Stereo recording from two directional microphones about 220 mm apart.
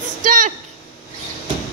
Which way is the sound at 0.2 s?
35° right (ahead or behind).